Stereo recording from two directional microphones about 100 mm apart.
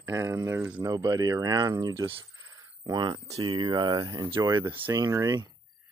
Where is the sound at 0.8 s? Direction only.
40° right (ahead or behind).